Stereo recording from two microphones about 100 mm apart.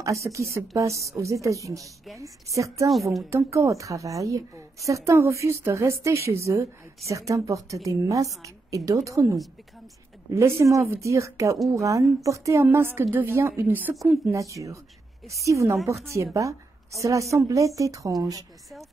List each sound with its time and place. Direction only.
0.0 s a woman's voice: 30° right (ahead or behind)
2.9 s a woman's voice: centre (ahead or behind)
3.3 s a woman's voice: 30° right (ahead or behind)
14.3 s a woman's voice: 30° right (ahead or behind)